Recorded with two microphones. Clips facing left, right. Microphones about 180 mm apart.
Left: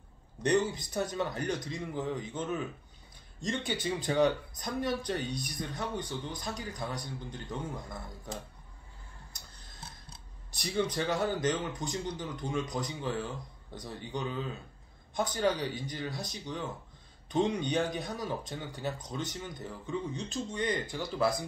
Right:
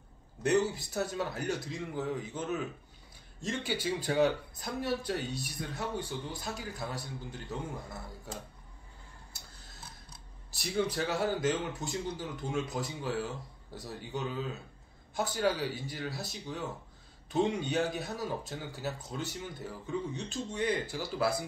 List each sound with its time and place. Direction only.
0.4 s a man's voice: 5° right (ahead or behind)
10.5 s a man's voice: 5° right (ahead or behind)